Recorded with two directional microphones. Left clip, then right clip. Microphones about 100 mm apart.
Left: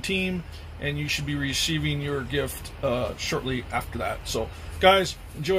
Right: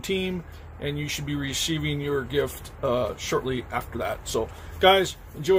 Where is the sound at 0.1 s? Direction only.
30° right (ahead or behind).